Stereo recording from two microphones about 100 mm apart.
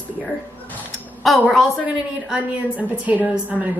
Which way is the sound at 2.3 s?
10° right (ahead or behind).